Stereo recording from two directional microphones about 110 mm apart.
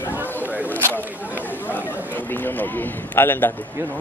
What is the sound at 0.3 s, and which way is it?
Single-lens reflex camera, 15° left (ahead or behind).